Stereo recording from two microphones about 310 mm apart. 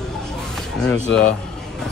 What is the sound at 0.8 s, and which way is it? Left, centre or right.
Speech, centre.